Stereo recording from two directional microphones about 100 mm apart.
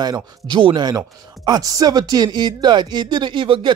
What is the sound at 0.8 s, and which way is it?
Speech, 40° right (ahead or behind).